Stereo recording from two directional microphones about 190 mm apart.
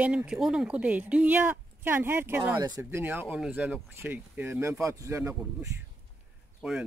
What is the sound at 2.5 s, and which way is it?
Speech, 20° right (ahead or behind).